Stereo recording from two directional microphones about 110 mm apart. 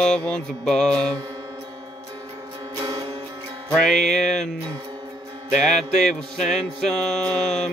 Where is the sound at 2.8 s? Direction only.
35° right (ahead or behind).